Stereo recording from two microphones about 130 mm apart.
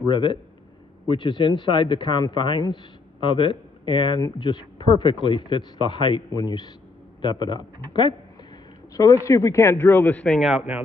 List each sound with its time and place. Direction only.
0.0 s a man's voice: 40° left (ahead or behind)
8.9 s speech: 25° left (ahead or behind); by 10.4 s 10° left (ahead or behind)
10.4 s speech: 5° right (ahead or behind)